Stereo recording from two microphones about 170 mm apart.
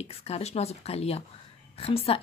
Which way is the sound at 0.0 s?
35° left (ahead or behind).